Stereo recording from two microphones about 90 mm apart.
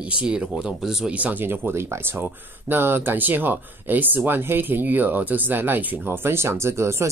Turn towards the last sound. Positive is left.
turn(degrees=-30)  # may be behind; listen again after turning